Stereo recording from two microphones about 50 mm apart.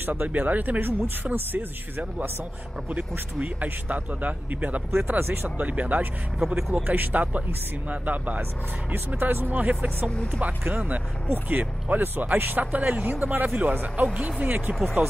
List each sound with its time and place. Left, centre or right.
0.0 s a man's voice: right
2.9 s a man's voice: right
5.2 s speech: right
5.6 s a man's voice: right
10.4 s a man's voice: right